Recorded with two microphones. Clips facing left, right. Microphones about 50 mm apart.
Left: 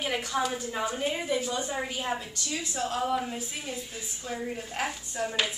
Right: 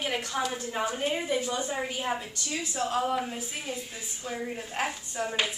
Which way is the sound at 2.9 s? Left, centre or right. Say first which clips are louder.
Even; centre.